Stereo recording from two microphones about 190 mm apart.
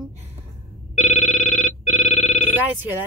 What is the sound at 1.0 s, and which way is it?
Telephone bell ringing, 35° left (ahead or behind).